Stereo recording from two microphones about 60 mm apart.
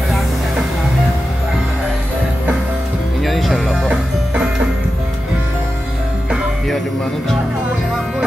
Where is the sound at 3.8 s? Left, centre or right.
Right.